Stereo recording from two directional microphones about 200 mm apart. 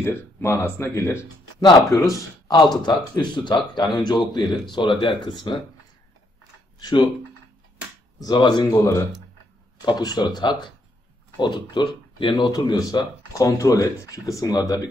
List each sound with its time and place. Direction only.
0.0 s speech: 10° left (ahead or behind)
6.8 s speech: 20° left (ahead or behind)
8.2 s speech: 20° left (ahead or behind)